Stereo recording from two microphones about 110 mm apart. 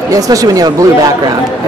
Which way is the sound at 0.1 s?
30° right (ahead or behind).